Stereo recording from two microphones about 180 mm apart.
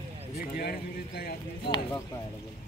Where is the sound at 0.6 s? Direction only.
60° left (ahead or behind).